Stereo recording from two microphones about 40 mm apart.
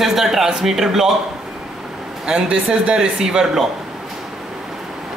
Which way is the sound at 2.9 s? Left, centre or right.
Centre.